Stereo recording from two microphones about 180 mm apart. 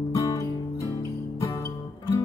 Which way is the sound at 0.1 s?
20° left (ahead or behind).